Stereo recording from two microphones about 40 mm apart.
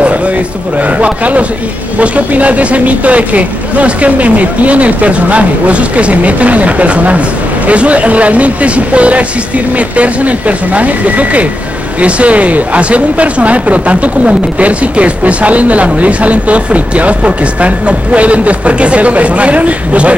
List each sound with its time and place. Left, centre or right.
0.9 s speech: right